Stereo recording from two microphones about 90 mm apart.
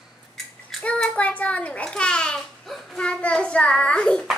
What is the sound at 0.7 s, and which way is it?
A child's voice, 5° left (ahead or behind).